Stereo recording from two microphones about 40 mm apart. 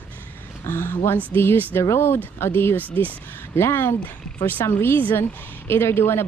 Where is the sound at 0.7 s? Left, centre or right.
Left.